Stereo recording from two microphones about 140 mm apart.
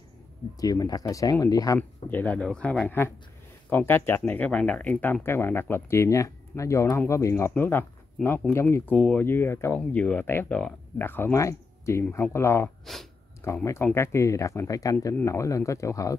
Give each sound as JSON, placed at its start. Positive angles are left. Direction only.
{"t": 0.6, "sound": "speech", "side_deg": 25}
{"t": 1.8, "sound": "speech", "side_deg": 10}